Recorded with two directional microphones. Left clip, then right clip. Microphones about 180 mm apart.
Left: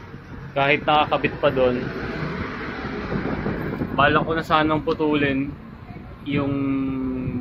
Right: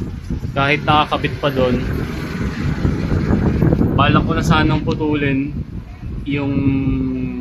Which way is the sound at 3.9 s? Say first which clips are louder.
Left 1 dB; 5° right (ahead or behind).